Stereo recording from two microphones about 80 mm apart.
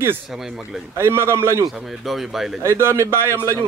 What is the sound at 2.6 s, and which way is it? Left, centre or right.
Speech, right.